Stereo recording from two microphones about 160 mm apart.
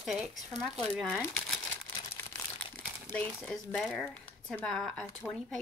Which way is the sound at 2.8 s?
10° left (ahead or behind).